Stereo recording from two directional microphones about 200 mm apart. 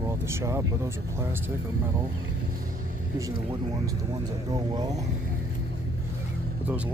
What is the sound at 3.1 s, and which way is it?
Speech, 15° right (ahead or behind).